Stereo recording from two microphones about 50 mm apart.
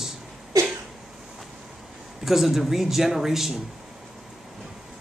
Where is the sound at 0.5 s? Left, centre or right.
Right.